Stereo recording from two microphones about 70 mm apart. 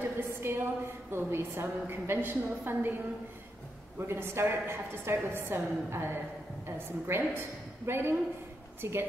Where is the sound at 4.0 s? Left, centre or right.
Right.